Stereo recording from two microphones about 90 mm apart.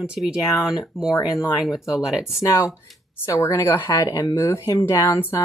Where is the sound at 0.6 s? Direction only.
5° right (ahead or behind).